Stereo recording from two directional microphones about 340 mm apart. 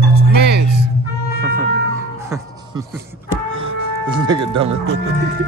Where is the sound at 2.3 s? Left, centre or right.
Centre.